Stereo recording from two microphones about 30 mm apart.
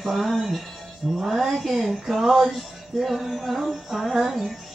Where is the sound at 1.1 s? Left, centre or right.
Centre.